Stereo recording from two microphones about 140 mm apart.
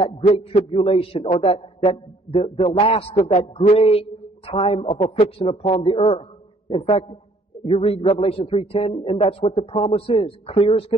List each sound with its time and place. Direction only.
0.0 s a man's voice: 40° left (ahead or behind)